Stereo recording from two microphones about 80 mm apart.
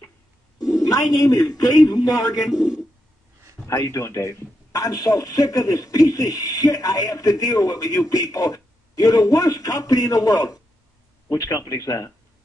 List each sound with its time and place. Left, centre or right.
0.6 s a sound: left
1.1 s a man's voice: left
3.6 s a man's voice: left